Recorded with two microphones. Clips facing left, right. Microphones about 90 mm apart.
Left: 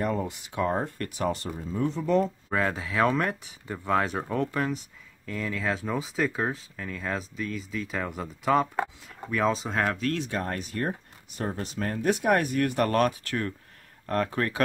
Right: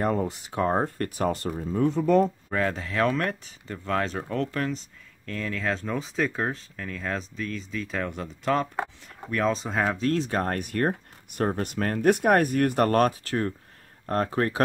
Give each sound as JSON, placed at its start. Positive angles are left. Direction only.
{"t": 0.0, "sound": "speech", "side_deg": -40}
{"t": 2.5, "sound": "speech", "side_deg": 5}
{"t": 9.9, "sound": "speech", "side_deg": -30}